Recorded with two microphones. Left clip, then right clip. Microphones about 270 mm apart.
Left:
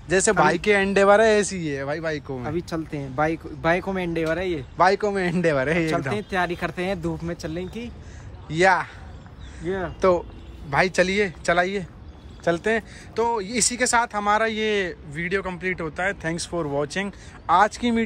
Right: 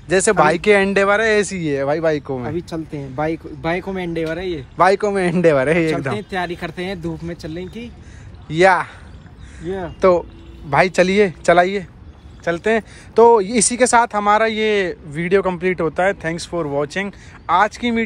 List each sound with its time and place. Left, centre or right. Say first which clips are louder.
0.1 s speech: right 5 dB; centre
9.9 s speech: right 7 dB; centre